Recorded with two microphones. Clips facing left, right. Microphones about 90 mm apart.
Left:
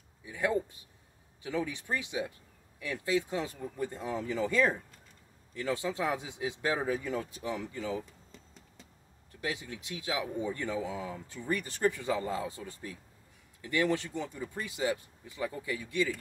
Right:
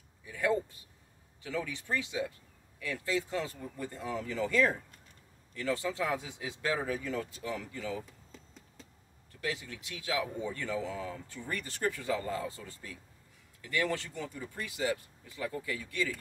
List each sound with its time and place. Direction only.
0.2 s speech: 15° left (ahead or behind)
8.3 s a sound: centre (ahead or behind)
9.4 s speech: 20° left (ahead or behind)